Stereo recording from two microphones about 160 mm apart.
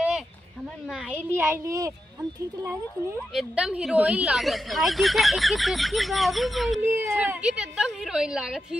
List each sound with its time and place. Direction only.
1.1 s speech: 15° right (ahead or behind)
3.3 s speech: 5° right (ahead or behind)
7.0 s speech: 15° right (ahead or behind)